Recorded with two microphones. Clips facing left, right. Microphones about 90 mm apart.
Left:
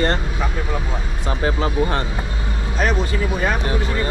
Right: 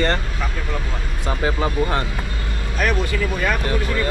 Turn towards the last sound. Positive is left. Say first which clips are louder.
# even
turn(degrees=30)  # may be behind; listen again after turning